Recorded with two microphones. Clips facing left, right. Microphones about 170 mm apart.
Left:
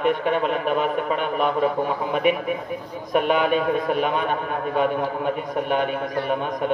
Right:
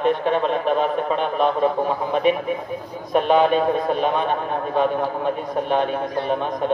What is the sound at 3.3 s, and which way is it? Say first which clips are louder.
A man's voice: right 3 dB; 30° right (ahead or behind).